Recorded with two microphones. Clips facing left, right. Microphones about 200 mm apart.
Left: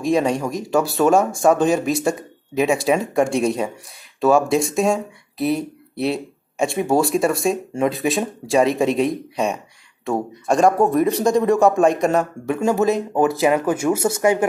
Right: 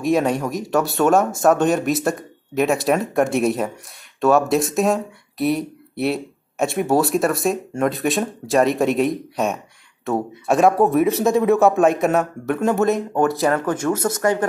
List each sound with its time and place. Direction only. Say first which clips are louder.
0.0 s speech: even; centre (ahead or behind)